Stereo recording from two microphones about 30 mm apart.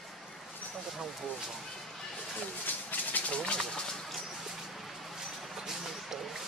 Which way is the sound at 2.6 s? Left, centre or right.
Left.